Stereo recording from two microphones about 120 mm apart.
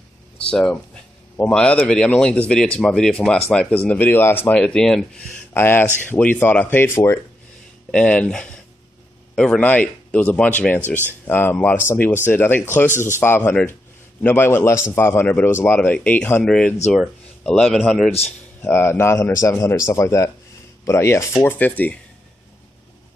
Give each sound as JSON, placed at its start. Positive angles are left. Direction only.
{"t": 0.5, "sound": "a man's voice", "side_deg": 5}
{"t": 5.5, "sound": "a man's voice", "side_deg": 20}
{"t": 18.7, "sound": "speech", "side_deg": 20}
{"t": 21.3, "sound": "a man's voice", "side_deg": 10}